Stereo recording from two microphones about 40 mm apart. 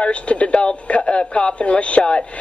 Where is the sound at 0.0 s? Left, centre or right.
Left.